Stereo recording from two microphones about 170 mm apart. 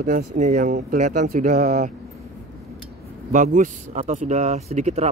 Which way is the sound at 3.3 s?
50° right (ahead or behind).